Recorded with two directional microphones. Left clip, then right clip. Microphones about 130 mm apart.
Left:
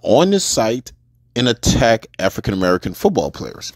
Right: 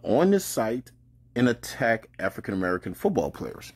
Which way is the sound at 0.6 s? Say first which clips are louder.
Left 10 dB; 35° left (ahead or behind).